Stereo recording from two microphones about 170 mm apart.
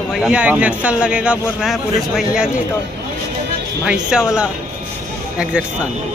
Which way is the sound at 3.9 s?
5° right (ahead or behind).